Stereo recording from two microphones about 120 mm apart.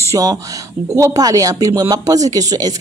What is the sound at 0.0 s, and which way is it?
Speech, 30° right (ahead or behind).